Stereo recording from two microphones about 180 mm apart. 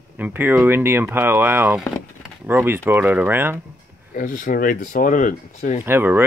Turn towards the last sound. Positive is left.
turn(degrees=-10)  # may be behind; listen again after turning